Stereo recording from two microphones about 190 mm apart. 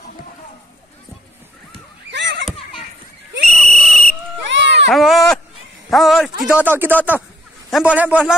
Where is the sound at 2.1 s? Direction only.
65° right (ahead or behind).